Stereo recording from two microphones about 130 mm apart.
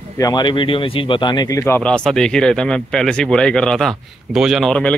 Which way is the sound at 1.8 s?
10° left (ahead or behind).